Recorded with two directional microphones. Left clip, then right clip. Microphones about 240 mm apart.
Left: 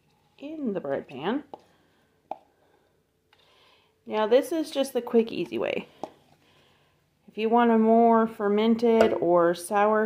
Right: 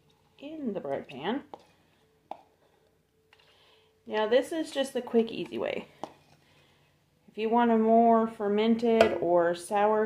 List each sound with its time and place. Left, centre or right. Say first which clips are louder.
0.4 s speech: left 4 dB; left
3.5 s speech: left 2 dB; left
7.3 s speech: left 3 dB; left